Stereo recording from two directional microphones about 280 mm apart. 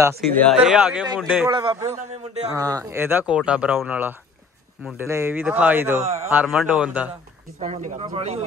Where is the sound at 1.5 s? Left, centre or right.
Centre.